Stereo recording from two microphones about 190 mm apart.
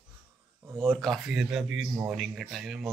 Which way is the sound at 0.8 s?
5° left (ahead or behind).